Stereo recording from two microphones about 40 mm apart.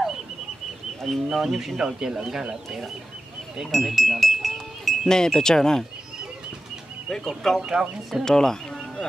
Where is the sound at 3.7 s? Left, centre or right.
Centre.